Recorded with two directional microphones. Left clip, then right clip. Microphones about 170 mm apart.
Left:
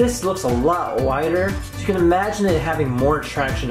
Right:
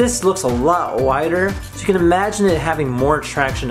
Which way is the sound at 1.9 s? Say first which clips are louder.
Right 3 dB; 35° right (ahead or behind).